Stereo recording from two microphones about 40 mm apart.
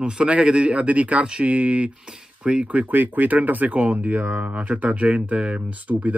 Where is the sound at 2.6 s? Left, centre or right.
Right.